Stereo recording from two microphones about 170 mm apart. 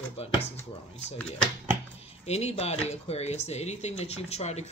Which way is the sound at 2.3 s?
40° left (ahead or behind).